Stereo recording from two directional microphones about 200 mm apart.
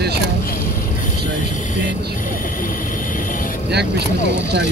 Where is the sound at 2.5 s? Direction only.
45° left (ahead or behind).